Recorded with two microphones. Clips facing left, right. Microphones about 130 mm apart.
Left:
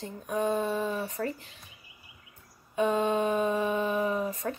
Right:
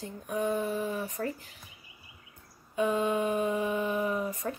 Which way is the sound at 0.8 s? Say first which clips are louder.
Left 2 dB; 75° left (ahead or behind).